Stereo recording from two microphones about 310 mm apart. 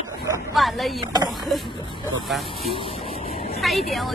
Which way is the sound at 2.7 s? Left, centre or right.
Centre.